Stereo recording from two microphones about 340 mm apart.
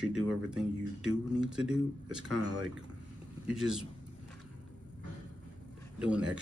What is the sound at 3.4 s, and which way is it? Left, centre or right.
Speech, centre.